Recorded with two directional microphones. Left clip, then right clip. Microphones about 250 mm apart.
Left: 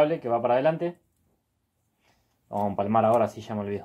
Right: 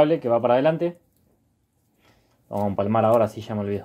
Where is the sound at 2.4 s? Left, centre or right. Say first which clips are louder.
Right 3 dB; right.